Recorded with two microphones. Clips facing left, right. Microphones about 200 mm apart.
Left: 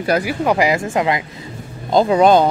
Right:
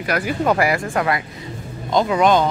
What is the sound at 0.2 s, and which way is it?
A woman's voice, 10° left (ahead or behind).